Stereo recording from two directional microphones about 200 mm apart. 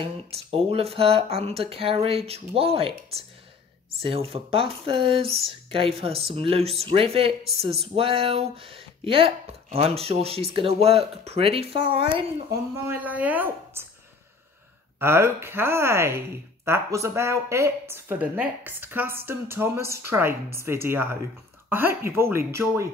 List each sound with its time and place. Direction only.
0.0 s speech: 30° right (ahead or behind)
12.8 s speech: 10° right (ahead or behind)
15.0 s speech: 10° right (ahead or behind)